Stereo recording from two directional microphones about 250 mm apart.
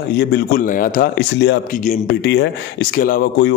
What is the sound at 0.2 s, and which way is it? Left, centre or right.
Speech, left.